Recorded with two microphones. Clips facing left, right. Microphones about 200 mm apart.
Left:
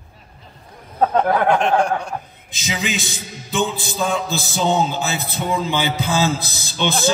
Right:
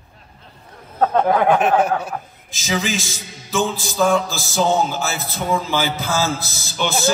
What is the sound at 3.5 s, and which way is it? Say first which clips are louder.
Music: right 1 dB; 20° left (ahead or behind).